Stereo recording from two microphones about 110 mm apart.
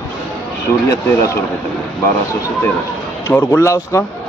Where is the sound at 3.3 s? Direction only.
25° left (ahead or behind).